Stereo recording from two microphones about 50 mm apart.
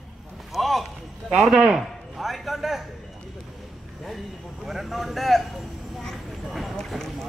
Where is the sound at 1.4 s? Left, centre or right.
Centre.